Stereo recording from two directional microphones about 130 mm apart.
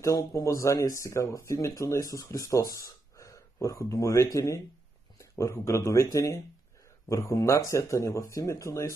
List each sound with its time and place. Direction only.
0.0 s speech: 25° left (ahead or behind)